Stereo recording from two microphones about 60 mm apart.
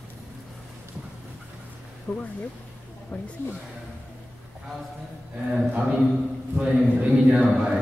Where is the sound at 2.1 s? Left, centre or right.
Centre.